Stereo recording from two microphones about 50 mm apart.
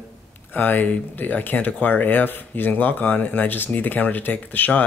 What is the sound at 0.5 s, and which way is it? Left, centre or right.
Speech, left.